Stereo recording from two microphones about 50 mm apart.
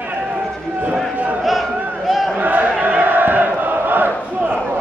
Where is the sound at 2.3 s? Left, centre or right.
Right.